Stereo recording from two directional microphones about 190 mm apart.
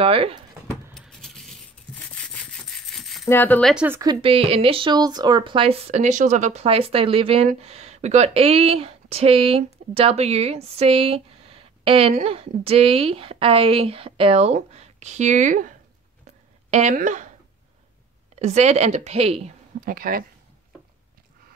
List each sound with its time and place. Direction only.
0.0 s speech: 30° right (ahead or behind)
0.9 s keys jangling: centre (ahead or behind)
2.3 s rub: centre (ahead or behind)
3.3 s speech: 10° left (ahead or behind)
3.7 s speech: 10° right (ahead or behind)
4.0 s speech: 25° right (ahead or behind); by 15.7 s 40° right (ahead or behind)
16.7 s speech: 40° right (ahead or behind)
18.3 s speech: 35° right (ahead or behind)
19.8 s speech: 50° right (ahead or behind)